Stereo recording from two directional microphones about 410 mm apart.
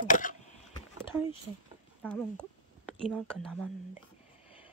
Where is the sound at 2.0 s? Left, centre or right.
Centre.